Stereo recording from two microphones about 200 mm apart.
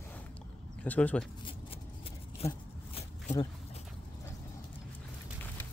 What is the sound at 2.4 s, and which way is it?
Speech, 30° left (ahead or behind).